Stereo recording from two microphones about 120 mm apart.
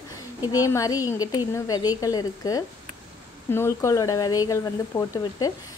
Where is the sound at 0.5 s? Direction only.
30° left (ahead or behind).